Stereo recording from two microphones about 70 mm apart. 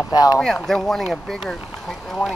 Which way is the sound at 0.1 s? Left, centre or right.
Left.